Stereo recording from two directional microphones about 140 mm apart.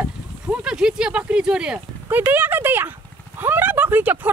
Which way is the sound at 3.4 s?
15° right (ahead or behind).